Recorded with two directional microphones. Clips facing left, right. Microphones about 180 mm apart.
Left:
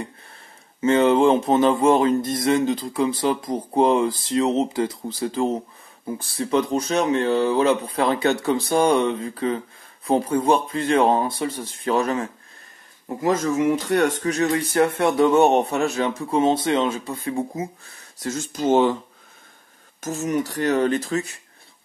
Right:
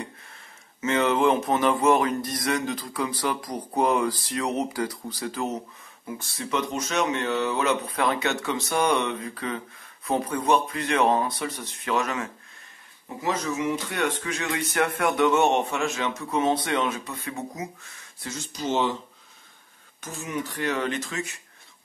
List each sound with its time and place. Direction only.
0.7 s speech: 30° left (ahead or behind)
13.2 s speech: 50° left (ahead or behind)
20.0 s speech: 45° left (ahead or behind)